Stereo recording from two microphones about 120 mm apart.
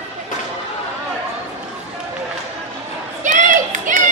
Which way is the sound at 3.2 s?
90° right.